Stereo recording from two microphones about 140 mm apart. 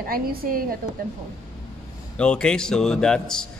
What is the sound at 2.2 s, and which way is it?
A man's voice, 5° left (ahead or behind).